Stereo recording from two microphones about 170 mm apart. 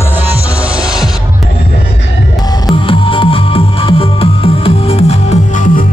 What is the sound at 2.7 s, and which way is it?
Music, 30° left (ahead or behind).